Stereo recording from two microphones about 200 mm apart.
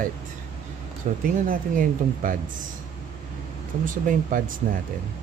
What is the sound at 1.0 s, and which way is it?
A man's voice, 35° right (ahead or behind).